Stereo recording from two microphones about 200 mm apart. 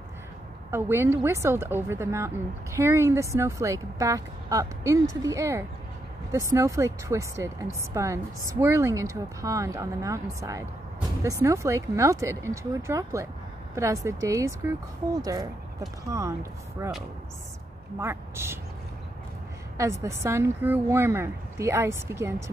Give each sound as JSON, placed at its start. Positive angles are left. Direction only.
{"t": 0.7, "sound": "a woman's voice", "side_deg": -10}
{"t": 16.1, "sound": "a woman's voice", "side_deg": -15}
{"t": 19.8, "sound": "a woman's voice", "side_deg": -15}